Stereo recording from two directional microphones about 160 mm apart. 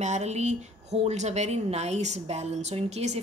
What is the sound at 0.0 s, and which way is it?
A woman's voice, 45° right (ahead or behind).